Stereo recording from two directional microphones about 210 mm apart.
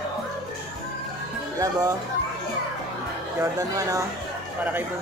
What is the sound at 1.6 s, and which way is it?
Speech, 15° right (ahead or behind).